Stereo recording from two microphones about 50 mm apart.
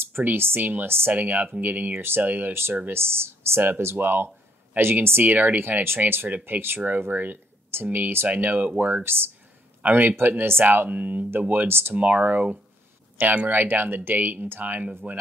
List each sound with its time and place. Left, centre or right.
0.0 s speech: right
0.8 s speech: right
1.1 s speech: right
9.0 s speech: right
9.8 s a man's voice: right
10.1 s speech: right
11.9 s speech: right